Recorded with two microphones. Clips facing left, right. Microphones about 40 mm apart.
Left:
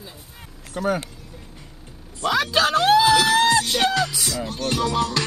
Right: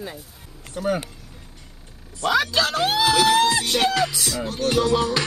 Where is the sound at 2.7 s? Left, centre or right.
Centre.